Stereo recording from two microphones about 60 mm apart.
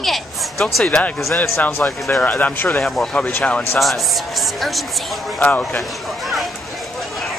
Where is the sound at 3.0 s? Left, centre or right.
Centre.